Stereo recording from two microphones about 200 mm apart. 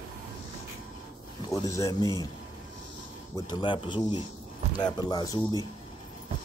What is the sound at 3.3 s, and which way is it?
Speech, 25° left (ahead or behind).